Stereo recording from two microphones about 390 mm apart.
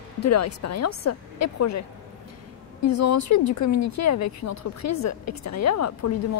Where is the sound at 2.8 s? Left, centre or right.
Left.